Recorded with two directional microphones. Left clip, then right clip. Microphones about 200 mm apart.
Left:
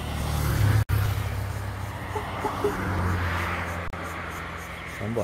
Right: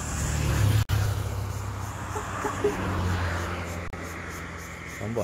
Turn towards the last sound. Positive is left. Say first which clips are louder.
# left 2 dB
turn(degrees=-50)  # may be behind; listen again after turning